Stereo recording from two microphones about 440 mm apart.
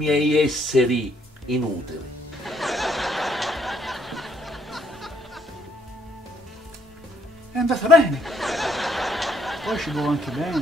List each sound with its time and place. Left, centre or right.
0.0 s speech: centre
2.4 s a sound: centre
7.5 s chuckle: centre